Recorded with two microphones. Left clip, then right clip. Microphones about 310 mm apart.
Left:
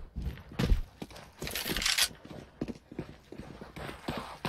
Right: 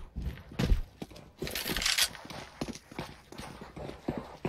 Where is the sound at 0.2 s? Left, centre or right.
Centre.